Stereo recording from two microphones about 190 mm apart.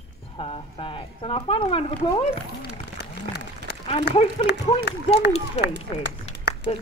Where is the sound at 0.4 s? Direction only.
30° left (ahead or behind).